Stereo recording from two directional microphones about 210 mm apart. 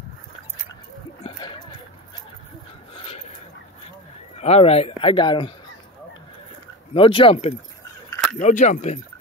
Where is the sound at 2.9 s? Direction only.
30° left (ahead or behind).